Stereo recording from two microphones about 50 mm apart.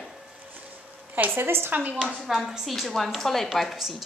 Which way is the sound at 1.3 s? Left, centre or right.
Right.